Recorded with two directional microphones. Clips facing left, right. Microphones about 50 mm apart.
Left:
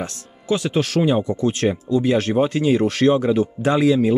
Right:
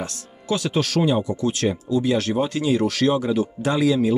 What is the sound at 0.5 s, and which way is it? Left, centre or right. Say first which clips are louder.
Speech: left 2 dB; centre.